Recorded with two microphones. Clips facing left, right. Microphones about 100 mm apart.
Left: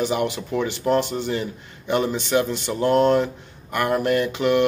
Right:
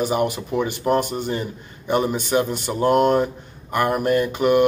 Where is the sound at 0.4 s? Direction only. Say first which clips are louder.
Right 1 dB; 15° right (ahead or behind).